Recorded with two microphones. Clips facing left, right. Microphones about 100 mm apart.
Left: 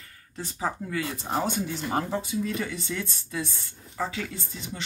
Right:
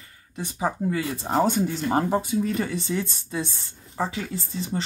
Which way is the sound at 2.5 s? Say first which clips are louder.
Right 5 dB; 35° right (ahead or behind).